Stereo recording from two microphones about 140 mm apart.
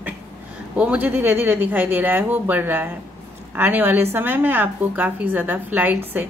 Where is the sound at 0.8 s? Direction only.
10° right (ahead or behind).